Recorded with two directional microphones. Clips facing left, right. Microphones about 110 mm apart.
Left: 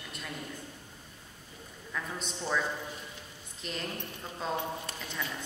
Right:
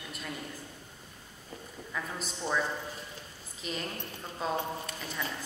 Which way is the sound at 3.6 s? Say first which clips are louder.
Right 1 dB; 5° right (ahead or behind).